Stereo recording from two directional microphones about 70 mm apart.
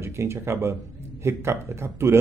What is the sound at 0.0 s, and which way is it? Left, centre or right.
A man's voice, right.